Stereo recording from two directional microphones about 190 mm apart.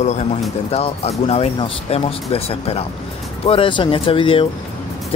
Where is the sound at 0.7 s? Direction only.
30° left (ahead or behind).